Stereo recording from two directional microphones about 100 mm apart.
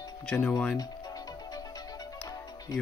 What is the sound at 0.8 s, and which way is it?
Music, 40° left (ahead or behind).